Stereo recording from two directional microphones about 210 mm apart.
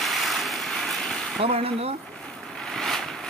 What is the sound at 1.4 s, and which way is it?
Speech, 30° right (ahead or behind).